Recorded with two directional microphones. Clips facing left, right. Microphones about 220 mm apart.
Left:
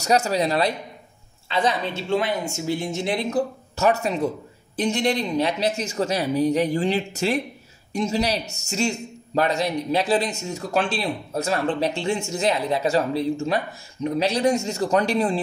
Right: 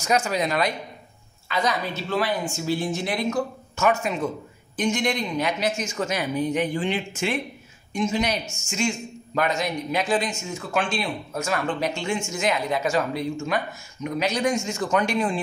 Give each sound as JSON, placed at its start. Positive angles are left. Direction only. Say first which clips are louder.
{"t": 0.0, "sound": "speech", "louder": "left 3 dB", "side_deg": 40}